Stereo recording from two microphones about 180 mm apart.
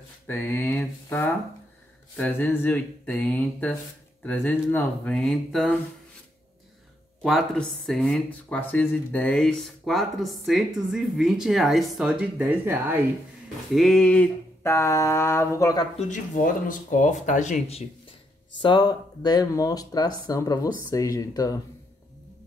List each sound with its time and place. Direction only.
0.3 s a sound: 10° left (ahead or behind)
4.3 s speech: 10° left (ahead or behind)
7.2 s speech: 5° left (ahead or behind)
13.7 s a sound: centre (ahead or behind); by 15.8 s 15° left (ahead or behind)
16.0 s speech: 45° left (ahead or behind)
18.6 s speech: 25° left (ahead or behind)